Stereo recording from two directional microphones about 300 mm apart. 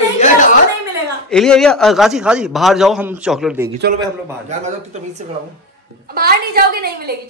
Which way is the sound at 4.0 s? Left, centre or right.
Right.